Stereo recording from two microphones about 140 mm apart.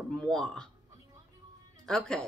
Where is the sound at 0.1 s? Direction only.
5° left (ahead or behind).